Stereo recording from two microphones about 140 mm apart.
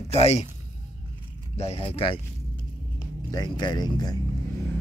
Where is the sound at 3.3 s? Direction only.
30° left (ahead or behind).